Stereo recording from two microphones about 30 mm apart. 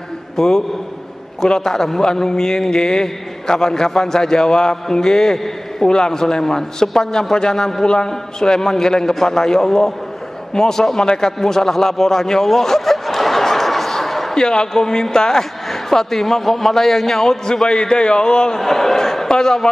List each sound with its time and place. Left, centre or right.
0.4 s a man's voice: centre
5.9 s a man's voice: left
10.5 s a sound: centre
14.3 s a man's voice: left
17.6 s a man's voice: left
18.6 s a sound: centre
19.2 s a man's voice: centre